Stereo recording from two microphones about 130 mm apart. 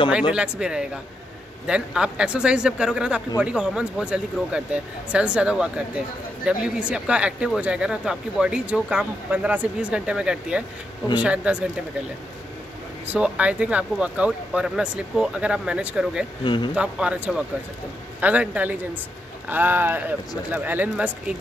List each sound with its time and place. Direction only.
0.3 s speech: 10° right (ahead or behind)
13.0 s speech: 10° right (ahead or behind)
16.4 s speech: 35° left (ahead or behind)
16.7 s speech: 10° right (ahead or behind)